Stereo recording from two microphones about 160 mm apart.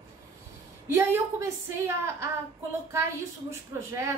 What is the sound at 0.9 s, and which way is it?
Speech, 15° right (ahead or behind).